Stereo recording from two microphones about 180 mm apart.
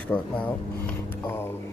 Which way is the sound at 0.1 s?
10° left (ahead or behind).